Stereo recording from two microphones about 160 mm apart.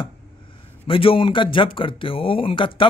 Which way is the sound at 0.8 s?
35° left (ahead or behind).